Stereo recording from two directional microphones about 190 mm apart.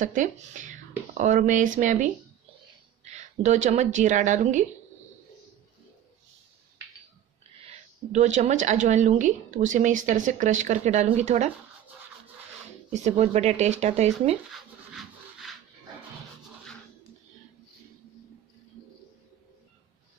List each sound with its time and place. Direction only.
0.0 s a woman's voice: 40° right (ahead or behind)
8.1 s a woman's voice: 40° right (ahead or behind)
12.9 s a woman's voice: 35° right (ahead or behind)
14.5 s rub: centre (ahead or behind)